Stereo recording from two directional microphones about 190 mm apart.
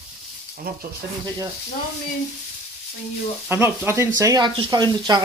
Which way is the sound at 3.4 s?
10° right (ahead or behind).